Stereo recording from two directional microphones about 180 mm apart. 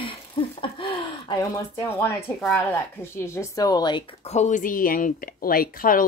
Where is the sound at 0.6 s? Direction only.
30° left (ahead or behind).